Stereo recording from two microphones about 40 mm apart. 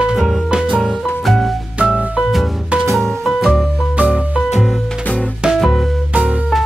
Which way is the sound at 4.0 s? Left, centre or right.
Right.